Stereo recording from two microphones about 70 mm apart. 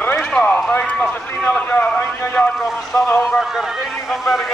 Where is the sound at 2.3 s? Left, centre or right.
Centre.